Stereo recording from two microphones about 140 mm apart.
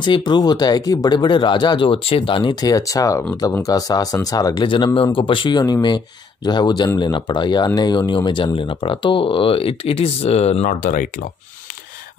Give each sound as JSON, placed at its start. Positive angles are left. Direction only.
{"t": 0.0, "sound": "speech", "side_deg": 35}
{"t": 10.7, "sound": "speech", "side_deg": 75}